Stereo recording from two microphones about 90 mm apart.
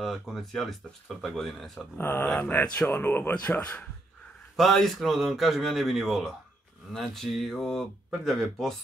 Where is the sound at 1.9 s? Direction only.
25° left (ahead or behind).